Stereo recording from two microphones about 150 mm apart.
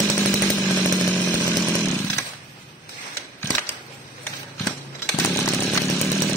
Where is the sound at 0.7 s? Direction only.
10° left (ahead or behind).